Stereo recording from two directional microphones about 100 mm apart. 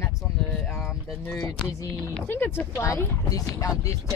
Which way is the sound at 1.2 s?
25° left (ahead or behind).